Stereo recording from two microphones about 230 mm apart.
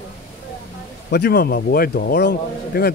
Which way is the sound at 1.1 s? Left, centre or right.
Left.